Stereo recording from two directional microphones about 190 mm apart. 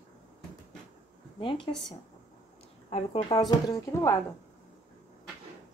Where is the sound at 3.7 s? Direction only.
15° left (ahead or behind).